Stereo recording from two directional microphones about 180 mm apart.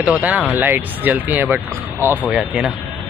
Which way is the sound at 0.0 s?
10° right (ahead or behind).